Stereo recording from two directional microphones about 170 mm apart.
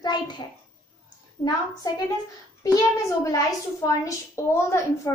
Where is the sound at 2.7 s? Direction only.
20° left (ahead or behind).